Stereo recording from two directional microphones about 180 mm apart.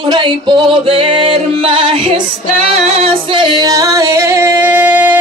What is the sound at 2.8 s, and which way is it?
Singing, 30° right (ahead or behind).